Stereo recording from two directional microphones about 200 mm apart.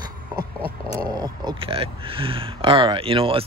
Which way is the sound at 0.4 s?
50° right (ahead or behind).